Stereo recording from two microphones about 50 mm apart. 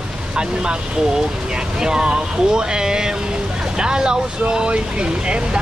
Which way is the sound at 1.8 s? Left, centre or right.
Centre.